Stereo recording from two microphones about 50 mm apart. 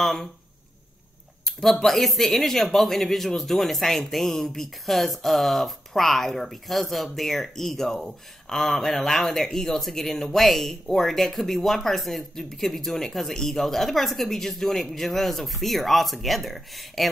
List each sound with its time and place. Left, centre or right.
0.0 s speech: centre
1.4 s speech: centre